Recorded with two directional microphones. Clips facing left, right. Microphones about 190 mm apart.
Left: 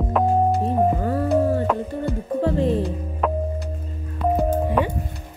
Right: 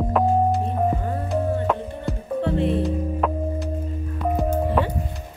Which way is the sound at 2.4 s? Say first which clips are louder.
Left 2 dB; 35° left (ahead or behind).